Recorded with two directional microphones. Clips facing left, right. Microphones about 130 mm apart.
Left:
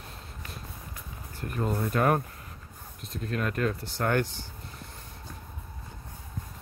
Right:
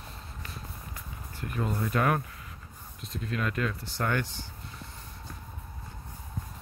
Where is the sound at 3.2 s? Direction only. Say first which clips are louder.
Left 2 dB; 45° left (ahead or behind).